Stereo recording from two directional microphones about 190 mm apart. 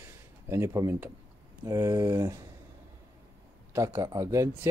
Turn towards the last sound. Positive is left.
turn(degrees=-15)  # may be behind; listen again after turning